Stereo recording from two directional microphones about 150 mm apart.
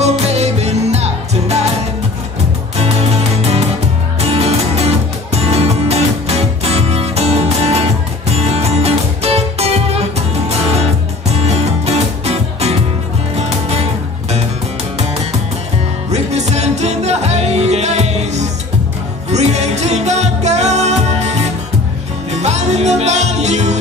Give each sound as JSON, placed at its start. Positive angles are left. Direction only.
{"t": 0.3, "sound": "music", "side_deg": -45}
{"t": 4.2, "sound": "music", "side_deg": -45}
{"t": 11.3, "sound": "music", "side_deg": -45}
{"t": 16.1, "sound": "music", "side_deg": -50}